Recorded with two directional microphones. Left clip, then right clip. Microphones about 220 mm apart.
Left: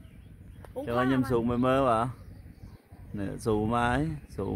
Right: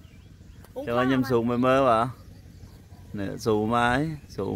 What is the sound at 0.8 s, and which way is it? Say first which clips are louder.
Speech: right 3 dB; 5° right (ahead or behind).